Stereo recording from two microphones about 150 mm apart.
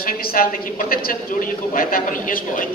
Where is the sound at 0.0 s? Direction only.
80° left.